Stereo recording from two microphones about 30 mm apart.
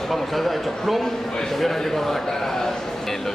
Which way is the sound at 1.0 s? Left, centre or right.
Centre.